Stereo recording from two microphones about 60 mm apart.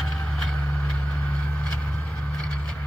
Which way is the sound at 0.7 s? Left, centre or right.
Left.